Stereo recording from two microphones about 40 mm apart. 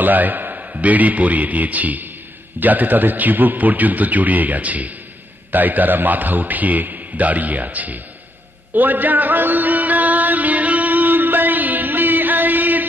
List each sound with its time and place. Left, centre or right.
0.0 s a man's voice: right
8.7 s music: right